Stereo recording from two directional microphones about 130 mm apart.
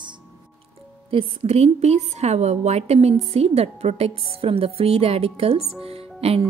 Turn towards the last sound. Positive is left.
turn(degrees=-50)  # may be behind; listen again after turning